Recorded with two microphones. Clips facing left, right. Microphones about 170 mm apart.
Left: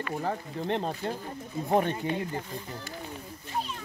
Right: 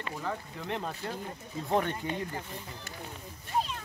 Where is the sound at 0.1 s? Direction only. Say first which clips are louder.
Left 4 dB; 40° left (ahead or behind).